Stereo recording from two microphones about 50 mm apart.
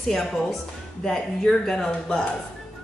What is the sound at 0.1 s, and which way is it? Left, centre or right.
Speech, centre.